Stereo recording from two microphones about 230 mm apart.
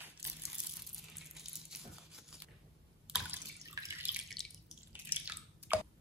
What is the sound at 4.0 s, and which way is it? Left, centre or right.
Water, centre.